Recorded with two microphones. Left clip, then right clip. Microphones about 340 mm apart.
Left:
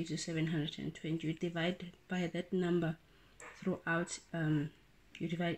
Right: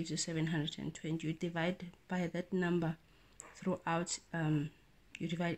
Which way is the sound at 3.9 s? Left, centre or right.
Centre.